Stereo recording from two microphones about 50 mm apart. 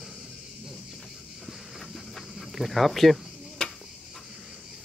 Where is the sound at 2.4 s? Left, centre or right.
Centre.